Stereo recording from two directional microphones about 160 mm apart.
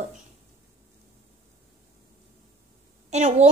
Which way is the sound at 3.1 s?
45° right (ahead or behind).